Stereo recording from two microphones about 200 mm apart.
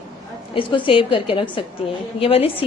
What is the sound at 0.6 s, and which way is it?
A woman's voice, 25° left (ahead or behind).